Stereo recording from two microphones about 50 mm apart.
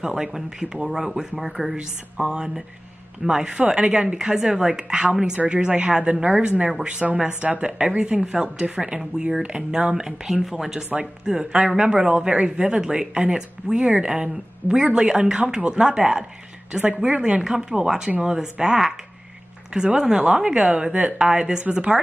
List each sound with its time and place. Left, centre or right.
0.0 s speech: centre
1.8 s a woman's voice: centre
4.2 s a woman's voice: centre